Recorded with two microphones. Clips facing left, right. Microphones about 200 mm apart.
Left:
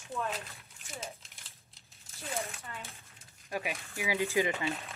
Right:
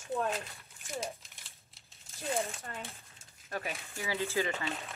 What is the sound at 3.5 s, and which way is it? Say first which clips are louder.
Speech: left 2 dB; 10° left (ahead or behind).